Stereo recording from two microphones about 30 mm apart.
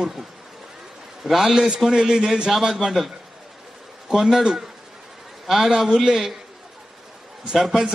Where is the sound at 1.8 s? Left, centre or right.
Right.